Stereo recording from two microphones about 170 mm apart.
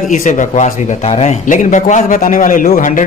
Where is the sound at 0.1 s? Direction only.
45° left (ahead or behind).